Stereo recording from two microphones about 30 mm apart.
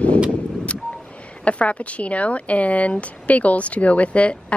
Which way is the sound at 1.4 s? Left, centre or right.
Left.